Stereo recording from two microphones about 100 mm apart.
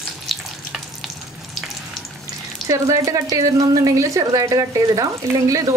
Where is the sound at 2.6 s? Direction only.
35° right (ahead or behind).